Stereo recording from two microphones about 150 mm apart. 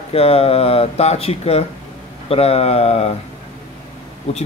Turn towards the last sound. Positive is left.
turn(degrees=45)  # may be behind; listen again after turning